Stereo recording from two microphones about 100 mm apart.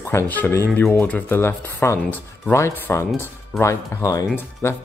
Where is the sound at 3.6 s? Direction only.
35° left (ahead or behind).